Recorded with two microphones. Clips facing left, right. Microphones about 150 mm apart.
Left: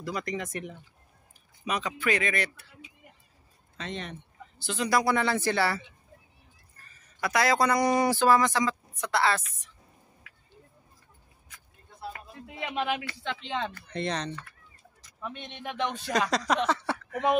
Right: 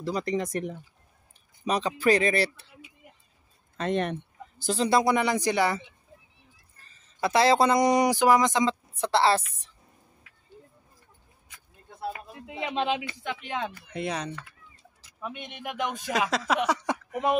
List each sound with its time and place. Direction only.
0.0 s speech: 30° right (ahead or behind)
3.7 s a sound: 55° right (ahead or behind)
4.6 s speech: 30° right (ahead or behind)
12.1 s speech: 20° right (ahead or behind)